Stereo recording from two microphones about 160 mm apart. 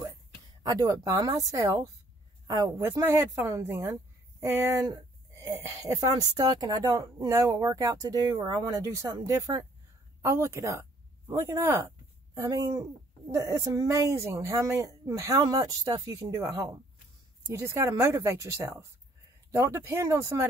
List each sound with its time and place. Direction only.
0.7 s a woman's voice: 25° right (ahead or behind)